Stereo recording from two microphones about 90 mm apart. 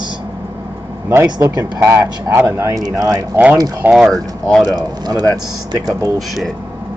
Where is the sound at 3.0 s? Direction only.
40° right (ahead or behind).